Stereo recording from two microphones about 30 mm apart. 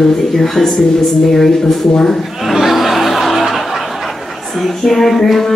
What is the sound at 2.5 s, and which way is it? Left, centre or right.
Chuckle, centre.